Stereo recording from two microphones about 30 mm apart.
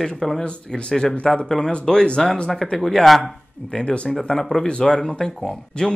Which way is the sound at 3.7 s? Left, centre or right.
Left.